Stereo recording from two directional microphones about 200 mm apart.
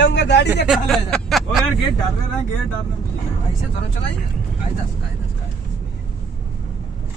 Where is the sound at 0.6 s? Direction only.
Centre (ahead or behind).